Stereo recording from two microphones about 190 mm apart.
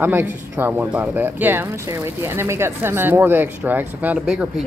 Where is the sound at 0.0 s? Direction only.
10° right (ahead or behind).